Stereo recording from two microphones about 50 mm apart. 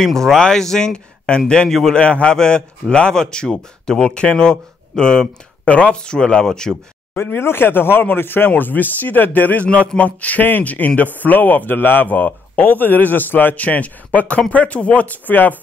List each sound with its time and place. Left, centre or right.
0.0 s speech: centre
2.0 s a man's voice: left
7.3 s a man's voice: left